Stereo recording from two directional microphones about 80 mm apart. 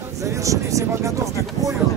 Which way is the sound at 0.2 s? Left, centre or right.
Right.